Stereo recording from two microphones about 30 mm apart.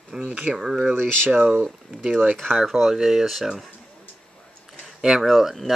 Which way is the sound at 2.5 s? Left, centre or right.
Centre.